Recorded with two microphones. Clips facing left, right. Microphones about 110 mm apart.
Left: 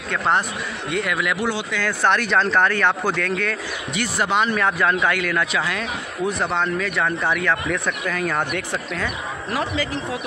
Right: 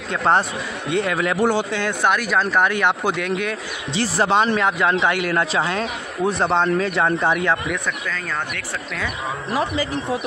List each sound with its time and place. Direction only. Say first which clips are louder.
0.8 s a man's voice: right 3 dB; 25° right (ahead or behind); by 1.7 s 45° right (ahead or behind)
1.7 s a man's voice: right 1 dB; 20° right (ahead or behind)
2.0 s speech: left 1 dB; 5° right (ahead or behind)
3.9 s a man's voice: right 3 dB; 30° right (ahead or behind)
7.8 s speech: left 3 dB; 10° left (ahead or behind)